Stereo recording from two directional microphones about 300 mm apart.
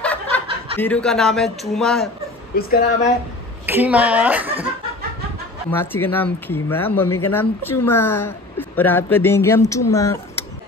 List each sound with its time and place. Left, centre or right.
0.0 s snicker: centre
0.7 s a man's voice: centre
2.5 s a woman's voice: left
3.6 s a man's voice: centre
5.7 s speech: centre